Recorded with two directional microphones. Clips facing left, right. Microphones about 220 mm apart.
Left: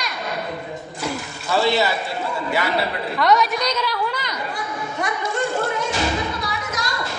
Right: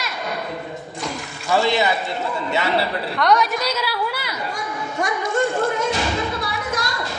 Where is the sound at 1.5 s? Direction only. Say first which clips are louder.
Even; 15° right (ahead or behind).